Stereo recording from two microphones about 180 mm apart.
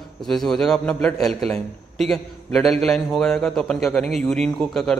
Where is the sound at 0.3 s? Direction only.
Centre (ahead or behind).